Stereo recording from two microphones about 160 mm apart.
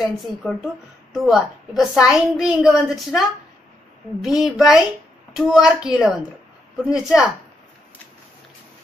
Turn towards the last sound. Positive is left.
turn(degrees=-5)  # may be behind; listen again after turning